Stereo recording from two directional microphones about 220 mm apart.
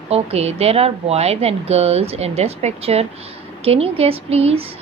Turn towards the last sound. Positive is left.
turn(degrees=-30)  # may be behind; listen again after turning